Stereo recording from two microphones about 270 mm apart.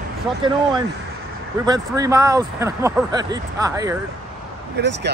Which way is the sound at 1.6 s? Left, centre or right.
Centre.